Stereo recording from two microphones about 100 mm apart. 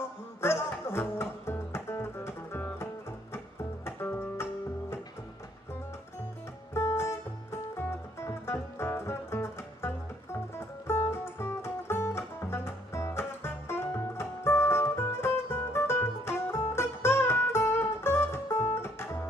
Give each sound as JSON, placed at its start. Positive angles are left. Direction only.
{"t": 0.4, "sound": "music", "side_deg": 25}
{"t": 6.7, "sound": "music", "side_deg": 25}